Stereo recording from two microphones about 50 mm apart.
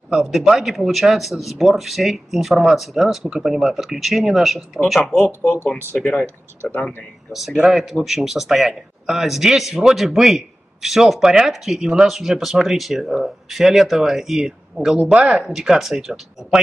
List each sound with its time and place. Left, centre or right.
0.1 s speech: centre
5.2 s speech: left
5.9 s speech: centre
7.3 s speech: centre